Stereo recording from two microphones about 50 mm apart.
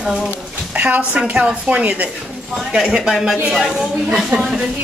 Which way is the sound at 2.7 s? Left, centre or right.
Centre.